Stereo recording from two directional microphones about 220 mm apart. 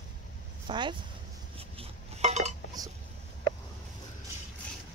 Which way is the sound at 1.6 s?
30° right (ahead or behind).